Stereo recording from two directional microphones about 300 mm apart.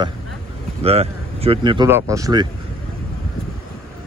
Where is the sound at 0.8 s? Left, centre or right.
Centre.